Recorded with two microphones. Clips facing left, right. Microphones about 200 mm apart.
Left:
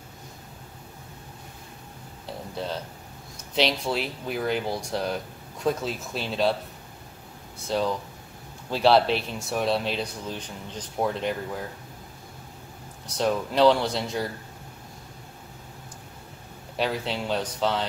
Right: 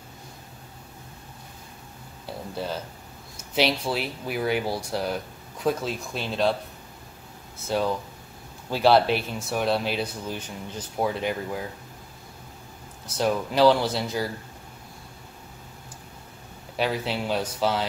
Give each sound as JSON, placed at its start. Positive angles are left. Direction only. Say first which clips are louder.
{"t": 3.5, "sound": "speech", "louder": "right 1 dB", "side_deg": -5}
{"t": 7.5, "sound": "speech", "louder": "right 1 dB", "side_deg": -5}
{"t": 13.0, "sound": "speech", "louder": "even", "side_deg": -5}
{"t": 16.7, "sound": "speech", "louder": "right 1 dB", "side_deg": 0}